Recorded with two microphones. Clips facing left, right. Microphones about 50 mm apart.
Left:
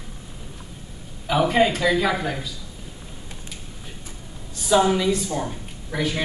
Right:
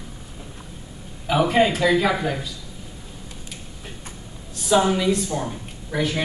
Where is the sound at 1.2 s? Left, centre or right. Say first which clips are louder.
Right 1 dB; centre.